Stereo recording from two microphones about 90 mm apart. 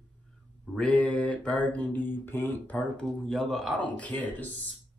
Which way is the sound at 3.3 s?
Centre (ahead or behind).